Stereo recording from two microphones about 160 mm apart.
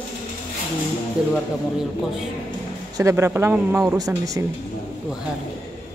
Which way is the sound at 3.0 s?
15° right (ahead or behind).